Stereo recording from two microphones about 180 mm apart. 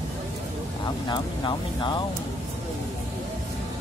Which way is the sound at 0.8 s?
25° left (ahead or behind).